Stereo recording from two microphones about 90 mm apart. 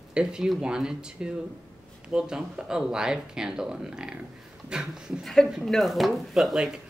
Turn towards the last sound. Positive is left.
turn(degrees=-5)  # may be behind; listen again after turning